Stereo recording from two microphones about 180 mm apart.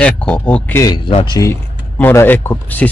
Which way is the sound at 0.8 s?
25° left (ahead or behind).